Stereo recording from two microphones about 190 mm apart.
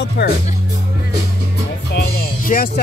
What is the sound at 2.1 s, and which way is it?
Music, 50° left (ahead or behind).